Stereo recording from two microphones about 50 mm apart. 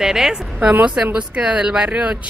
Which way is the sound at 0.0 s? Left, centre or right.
Centre.